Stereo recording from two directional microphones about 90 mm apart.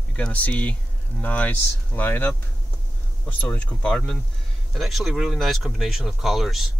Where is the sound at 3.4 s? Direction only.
15° left (ahead or behind).